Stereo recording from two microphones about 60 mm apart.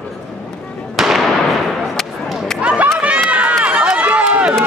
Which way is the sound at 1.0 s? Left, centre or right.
Centre.